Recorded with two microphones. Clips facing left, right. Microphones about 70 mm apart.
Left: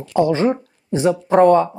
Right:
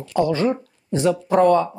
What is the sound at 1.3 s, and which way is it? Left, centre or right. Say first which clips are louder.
Speech: left 4 dB; left.